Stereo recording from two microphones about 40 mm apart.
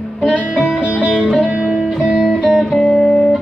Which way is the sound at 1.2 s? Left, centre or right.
Centre.